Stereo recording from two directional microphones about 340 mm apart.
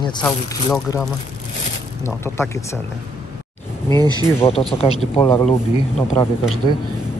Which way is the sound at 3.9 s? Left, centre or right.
Centre.